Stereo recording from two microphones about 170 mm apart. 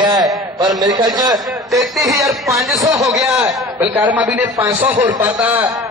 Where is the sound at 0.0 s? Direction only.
25° right (ahead or behind).